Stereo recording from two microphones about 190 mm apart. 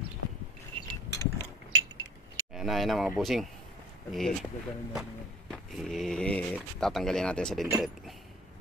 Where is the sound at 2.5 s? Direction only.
Centre (ahead or behind).